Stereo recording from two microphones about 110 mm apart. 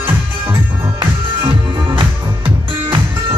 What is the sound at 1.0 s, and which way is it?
Music, 45° right (ahead or behind).